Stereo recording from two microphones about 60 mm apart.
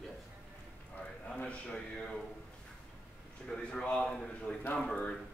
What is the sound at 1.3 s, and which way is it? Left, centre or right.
Speech, centre.